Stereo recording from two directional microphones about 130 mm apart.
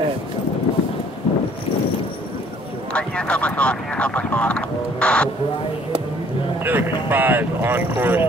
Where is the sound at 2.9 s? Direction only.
10° left (ahead or behind).